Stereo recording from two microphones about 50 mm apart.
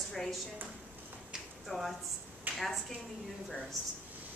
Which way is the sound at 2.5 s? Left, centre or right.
Right.